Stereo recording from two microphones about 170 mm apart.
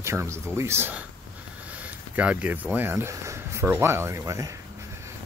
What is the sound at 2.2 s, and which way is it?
Speech, 10° right (ahead or behind).